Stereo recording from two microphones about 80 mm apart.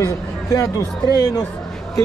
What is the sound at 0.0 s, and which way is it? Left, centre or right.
Speech, left.